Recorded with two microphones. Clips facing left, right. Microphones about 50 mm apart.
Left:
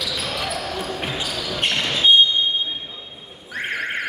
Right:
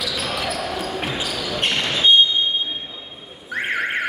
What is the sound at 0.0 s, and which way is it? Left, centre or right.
Basketball bounce, centre.